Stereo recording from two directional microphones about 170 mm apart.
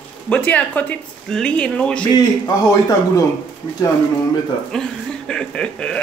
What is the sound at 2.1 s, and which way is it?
A man's voice, 20° left (ahead or behind).